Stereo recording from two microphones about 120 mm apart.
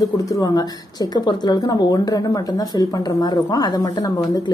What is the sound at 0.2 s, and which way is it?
Speech, 30° left (ahead or behind).